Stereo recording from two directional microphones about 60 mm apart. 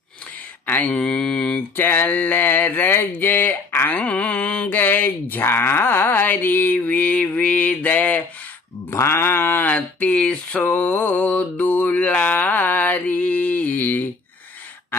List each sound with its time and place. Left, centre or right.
0.7 s a sound: left
1.8 s speech: left
4.0 s speech: left
8.9 s sheep: left
9.7 s a sound: left
10.6 s mantra: left